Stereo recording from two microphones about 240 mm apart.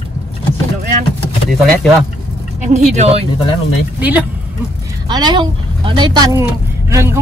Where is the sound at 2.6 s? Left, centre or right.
Right.